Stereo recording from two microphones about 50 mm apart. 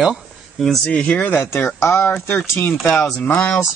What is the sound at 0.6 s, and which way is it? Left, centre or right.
Speech, centre.